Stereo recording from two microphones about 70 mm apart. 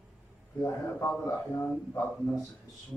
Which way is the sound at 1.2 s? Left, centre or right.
Left.